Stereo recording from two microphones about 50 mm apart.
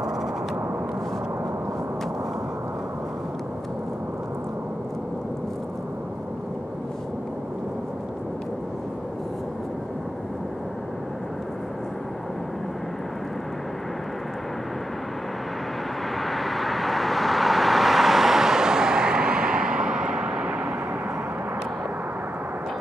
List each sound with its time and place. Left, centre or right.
16.2 s vehicle: centre; by 20.6 s right